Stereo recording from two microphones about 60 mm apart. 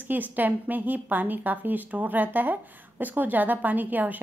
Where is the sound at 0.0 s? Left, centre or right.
Right.